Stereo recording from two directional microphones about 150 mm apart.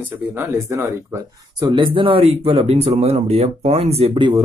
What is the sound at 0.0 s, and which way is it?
Speech, 15° right (ahead or behind).